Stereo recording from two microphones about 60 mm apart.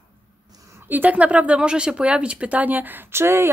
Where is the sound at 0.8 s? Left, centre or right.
Right.